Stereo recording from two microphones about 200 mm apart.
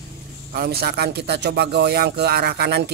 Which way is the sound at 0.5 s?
50° right (ahead or behind).